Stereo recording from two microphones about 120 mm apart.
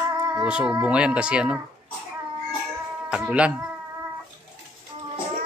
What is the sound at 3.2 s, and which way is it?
Speech, 10° right (ahead or behind).